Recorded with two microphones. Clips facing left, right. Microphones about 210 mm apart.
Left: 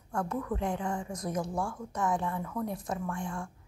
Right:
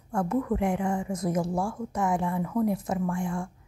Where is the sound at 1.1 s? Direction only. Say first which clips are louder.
Right 6 dB; 25° right (ahead or behind).